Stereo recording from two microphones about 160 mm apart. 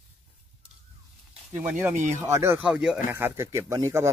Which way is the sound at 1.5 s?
10° right (ahead or behind).